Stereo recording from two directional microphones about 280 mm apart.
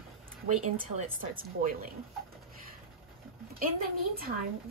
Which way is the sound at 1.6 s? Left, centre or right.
Right.